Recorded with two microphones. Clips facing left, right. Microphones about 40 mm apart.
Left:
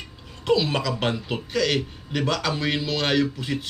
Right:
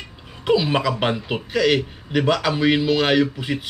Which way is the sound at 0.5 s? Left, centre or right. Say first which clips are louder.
Right 3 dB; centre.